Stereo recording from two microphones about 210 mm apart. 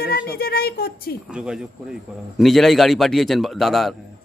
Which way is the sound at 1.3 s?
5° right (ahead or behind).